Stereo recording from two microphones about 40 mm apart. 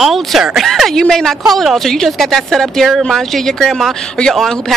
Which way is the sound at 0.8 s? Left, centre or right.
Centre.